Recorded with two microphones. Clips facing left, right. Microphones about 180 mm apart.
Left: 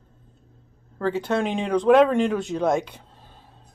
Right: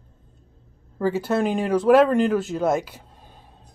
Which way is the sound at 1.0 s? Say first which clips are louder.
Right 2 dB; 5° right (ahead or behind).